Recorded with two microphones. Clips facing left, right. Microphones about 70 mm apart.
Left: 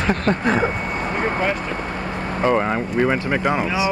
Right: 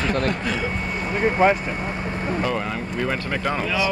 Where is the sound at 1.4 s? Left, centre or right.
Centre.